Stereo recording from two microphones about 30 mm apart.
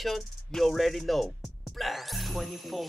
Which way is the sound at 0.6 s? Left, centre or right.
Centre.